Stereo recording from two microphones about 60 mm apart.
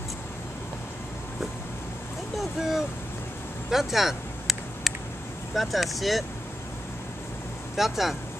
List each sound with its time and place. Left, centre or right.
2.3 s speech: centre
3.7 s a sound: centre
5.5 s speech: centre
7.7 s speech: centre